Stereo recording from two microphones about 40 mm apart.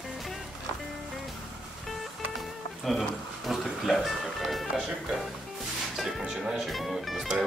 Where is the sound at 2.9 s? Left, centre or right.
Centre.